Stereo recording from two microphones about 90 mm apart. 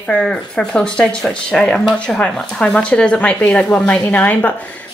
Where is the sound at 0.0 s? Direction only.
10° left (ahead or behind).